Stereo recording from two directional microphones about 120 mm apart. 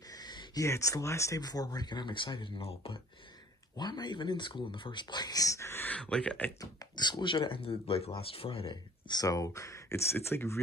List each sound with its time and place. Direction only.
0.1 s a sound: 35° left (ahead or behind)
0.7 s speech: 25° left (ahead or behind); by 3.0 s 50° left (ahead or behind)
3.7 s speech: 35° left (ahead or behind); by 6.5 s 10° left (ahead or behind)
6.6 s speech: 35° left (ahead or behind)